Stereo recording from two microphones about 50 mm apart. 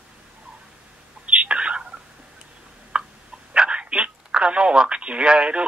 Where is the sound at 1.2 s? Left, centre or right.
Right.